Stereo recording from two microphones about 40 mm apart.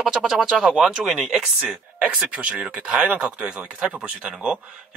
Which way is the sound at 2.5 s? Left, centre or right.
Centre.